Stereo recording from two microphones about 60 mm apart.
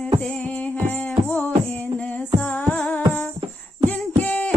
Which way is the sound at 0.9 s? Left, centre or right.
Left.